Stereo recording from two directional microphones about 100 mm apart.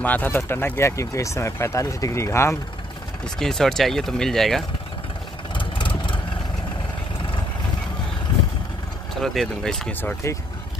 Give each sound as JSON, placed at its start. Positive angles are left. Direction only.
{"t": 0.0, "sound": "speech", "side_deg": 15}
{"t": 3.3, "sound": "speech", "side_deg": 5}
{"t": 5.5, "sound": "vehicle", "side_deg": 55}
{"t": 9.1, "sound": "speech", "side_deg": 5}